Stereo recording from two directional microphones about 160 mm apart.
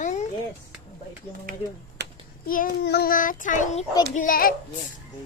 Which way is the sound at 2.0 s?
90° right.